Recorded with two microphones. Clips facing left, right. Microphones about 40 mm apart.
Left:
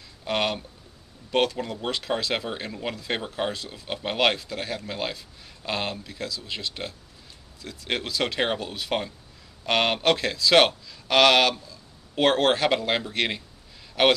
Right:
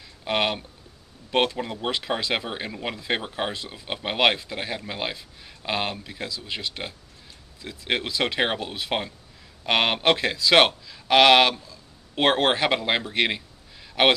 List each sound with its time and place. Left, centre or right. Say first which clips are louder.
0.3 s speech: right 1 dB; centre